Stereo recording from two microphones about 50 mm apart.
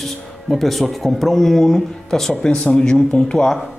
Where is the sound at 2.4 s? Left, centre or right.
Centre.